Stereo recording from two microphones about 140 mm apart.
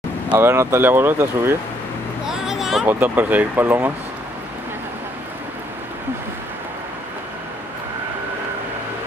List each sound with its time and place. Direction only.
0.3 s speech: 15° right (ahead or behind)
2.2 s a sound: 5° right (ahead or behind)
2.9 s speech: 15° right (ahead or behind)